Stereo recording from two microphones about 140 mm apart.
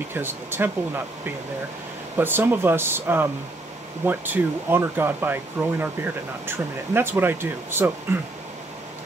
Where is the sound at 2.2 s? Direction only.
15° right (ahead or behind).